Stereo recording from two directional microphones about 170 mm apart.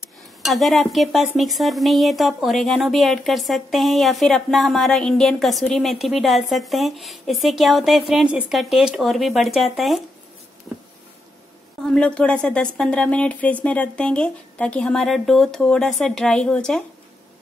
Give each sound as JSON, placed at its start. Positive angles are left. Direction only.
{"t": 0.4, "sound": "speech", "side_deg": 0}
{"t": 11.9, "sound": "speech", "side_deg": 5}